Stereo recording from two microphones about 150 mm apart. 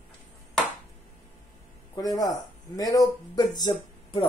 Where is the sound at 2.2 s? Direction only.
25° left (ahead or behind).